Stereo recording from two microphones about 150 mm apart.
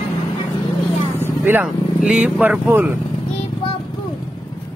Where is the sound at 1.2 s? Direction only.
15° right (ahead or behind).